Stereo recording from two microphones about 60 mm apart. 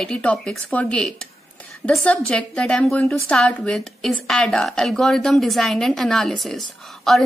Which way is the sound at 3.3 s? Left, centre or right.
Centre.